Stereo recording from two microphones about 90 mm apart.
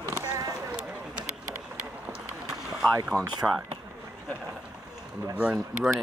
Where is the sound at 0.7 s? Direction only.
10° right (ahead or behind).